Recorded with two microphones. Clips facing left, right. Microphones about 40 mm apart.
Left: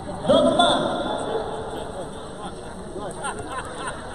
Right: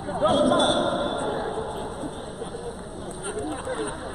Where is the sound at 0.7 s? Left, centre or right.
Centre.